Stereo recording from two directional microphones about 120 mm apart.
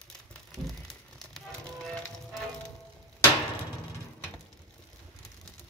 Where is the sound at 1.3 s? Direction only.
5° left (ahead or behind).